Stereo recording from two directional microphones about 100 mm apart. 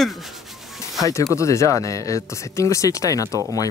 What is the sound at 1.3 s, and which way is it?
Speech, 30° left (ahead or behind).